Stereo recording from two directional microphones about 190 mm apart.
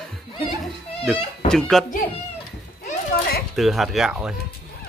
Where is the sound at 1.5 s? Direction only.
Centre (ahead or behind).